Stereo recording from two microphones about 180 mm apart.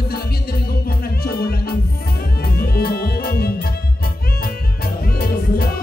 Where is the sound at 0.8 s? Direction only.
55° left (ahead or behind).